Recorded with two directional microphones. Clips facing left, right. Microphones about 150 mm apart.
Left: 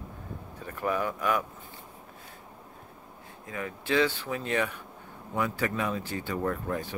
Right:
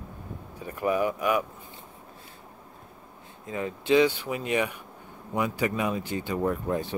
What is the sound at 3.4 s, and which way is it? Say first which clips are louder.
Speech: right 5 dB; 25° right (ahead or behind).